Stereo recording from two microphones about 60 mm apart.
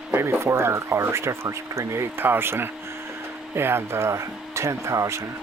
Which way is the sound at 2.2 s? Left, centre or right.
Right.